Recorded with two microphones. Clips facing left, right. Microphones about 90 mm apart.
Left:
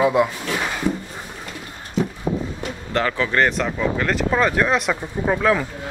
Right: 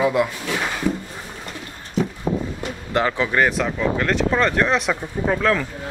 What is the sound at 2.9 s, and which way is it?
Speech, 15° right (ahead or behind).